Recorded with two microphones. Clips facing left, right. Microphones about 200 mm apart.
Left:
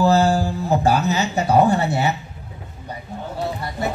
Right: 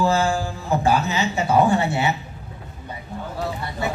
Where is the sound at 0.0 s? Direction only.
40° left (ahead or behind).